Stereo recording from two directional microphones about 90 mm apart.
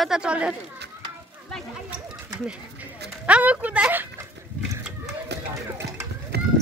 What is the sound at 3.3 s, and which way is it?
Speech, 15° right (ahead or behind).